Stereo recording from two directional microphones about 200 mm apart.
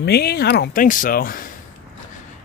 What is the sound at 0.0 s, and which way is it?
Speech, 55° left (ahead or behind).